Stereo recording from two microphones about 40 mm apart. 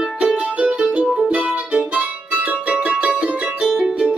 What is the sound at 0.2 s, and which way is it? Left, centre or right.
Music, right.